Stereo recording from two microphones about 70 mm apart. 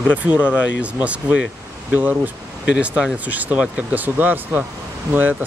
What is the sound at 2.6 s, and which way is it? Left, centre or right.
Speech, centre.